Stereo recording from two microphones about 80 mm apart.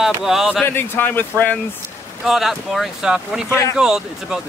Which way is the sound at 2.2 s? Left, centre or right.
Centre.